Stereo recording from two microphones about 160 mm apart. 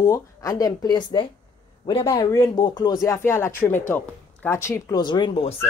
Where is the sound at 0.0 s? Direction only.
20° left (ahead or behind).